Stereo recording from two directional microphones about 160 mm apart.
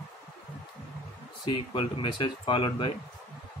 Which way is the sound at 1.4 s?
30° left (ahead or behind).